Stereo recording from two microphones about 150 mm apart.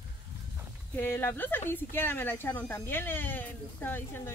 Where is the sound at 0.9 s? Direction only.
15° left (ahead or behind).